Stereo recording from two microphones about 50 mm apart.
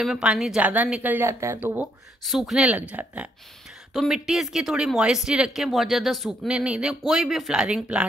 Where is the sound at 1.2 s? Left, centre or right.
Right.